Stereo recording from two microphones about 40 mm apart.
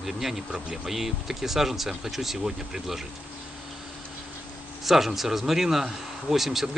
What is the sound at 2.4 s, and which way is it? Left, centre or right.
Speech, centre.